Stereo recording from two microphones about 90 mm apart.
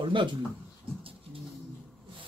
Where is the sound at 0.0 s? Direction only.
65° right (ahead or behind).